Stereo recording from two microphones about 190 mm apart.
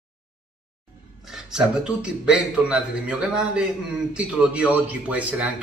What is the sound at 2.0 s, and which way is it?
A man's voice, 5° right (ahead or behind).